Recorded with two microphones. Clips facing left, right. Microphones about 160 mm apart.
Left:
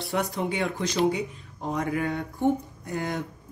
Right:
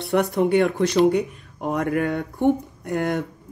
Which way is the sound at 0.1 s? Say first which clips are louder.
Right 10 dB; 65° right (ahead or behind).